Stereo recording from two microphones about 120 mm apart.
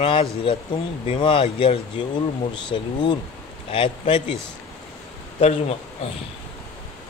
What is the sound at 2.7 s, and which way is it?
Speech, 40° left (ahead or behind).